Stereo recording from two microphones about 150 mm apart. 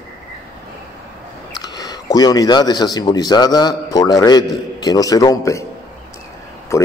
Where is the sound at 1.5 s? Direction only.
25° left (ahead or behind).